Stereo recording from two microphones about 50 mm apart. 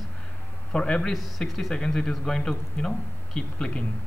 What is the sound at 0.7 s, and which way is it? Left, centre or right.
A man's voice, centre.